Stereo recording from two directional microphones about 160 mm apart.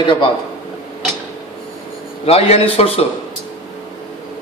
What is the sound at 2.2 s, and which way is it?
Speech, 40° left (ahead or behind).